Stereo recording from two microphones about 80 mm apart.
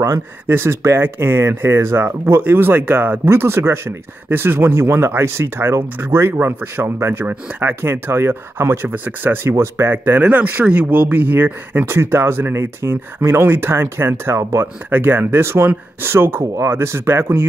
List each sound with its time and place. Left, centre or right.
0.5 s speech: right
14.9 s speech: right